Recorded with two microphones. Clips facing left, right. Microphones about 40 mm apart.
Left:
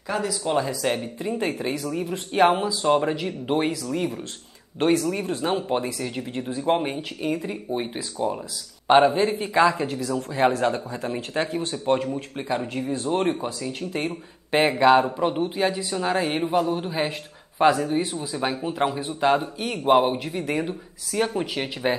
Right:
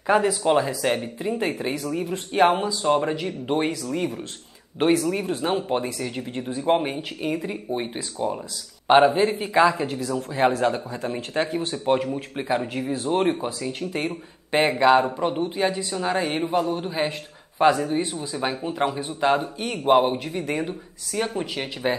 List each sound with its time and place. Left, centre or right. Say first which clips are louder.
0.0 s speech: right 6 dB; right
0.7 s speech: right 1 dB; centre
4.7 s speech: right 1 dB; centre